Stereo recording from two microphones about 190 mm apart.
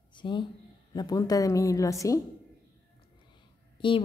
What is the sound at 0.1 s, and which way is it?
A woman's voice, 25° left (ahead or behind).